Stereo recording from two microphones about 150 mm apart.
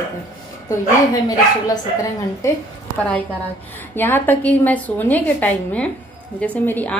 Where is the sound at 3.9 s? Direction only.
15° left (ahead or behind).